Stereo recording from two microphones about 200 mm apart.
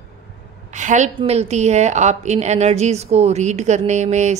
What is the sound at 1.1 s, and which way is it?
A woman's voice, 30° right (ahead or behind).